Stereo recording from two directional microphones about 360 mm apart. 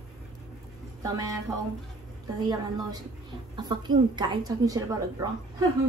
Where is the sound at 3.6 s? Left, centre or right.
Centre.